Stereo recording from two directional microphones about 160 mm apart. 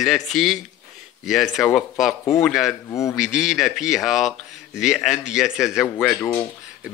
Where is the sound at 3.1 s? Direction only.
5° right (ahead or behind).